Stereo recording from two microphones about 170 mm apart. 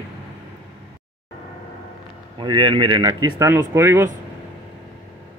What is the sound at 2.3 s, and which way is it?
Speech, 30° right (ahead or behind).